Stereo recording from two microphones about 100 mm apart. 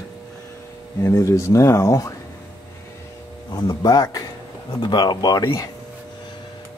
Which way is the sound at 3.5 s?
40° left (ahead or behind).